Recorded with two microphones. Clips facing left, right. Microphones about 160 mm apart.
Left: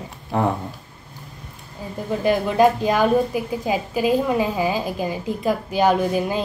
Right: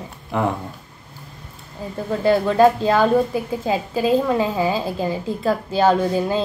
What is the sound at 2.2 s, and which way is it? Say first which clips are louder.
A woman's voice: right 2 dB; 15° left (ahead or behind).